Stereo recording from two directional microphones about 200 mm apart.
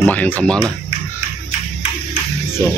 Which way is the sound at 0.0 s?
10° left (ahead or behind).